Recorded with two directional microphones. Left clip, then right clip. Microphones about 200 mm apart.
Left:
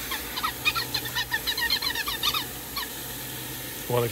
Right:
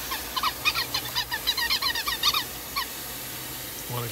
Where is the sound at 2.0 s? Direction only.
30° right (ahead or behind).